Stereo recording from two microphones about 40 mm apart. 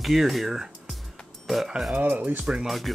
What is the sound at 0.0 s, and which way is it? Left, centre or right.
Speech, centre.